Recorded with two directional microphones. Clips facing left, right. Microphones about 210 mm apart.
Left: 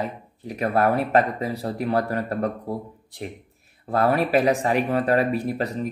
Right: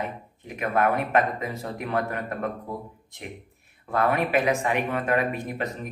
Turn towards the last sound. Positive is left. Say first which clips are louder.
# left 5 dB
turn(degrees=35)  # may be behind; listen again after turning